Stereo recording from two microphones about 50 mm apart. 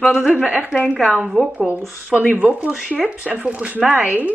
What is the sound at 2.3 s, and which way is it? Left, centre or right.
Speech, right.